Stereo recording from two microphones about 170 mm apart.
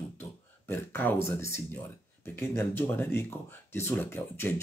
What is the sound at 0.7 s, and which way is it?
Speech, 15° left (ahead or behind).